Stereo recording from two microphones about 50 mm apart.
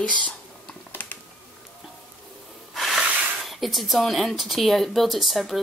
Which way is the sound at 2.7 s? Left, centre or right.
Centre.